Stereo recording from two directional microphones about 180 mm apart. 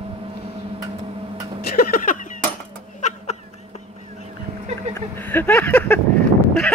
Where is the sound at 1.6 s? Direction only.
55° left (ahead or behind).